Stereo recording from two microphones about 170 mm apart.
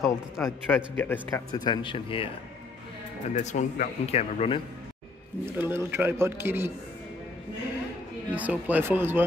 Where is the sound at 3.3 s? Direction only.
45° left (ahead or behind).